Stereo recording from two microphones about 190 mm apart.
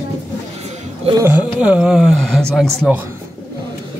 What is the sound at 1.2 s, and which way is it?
Speech, 5° right (ahead or behind).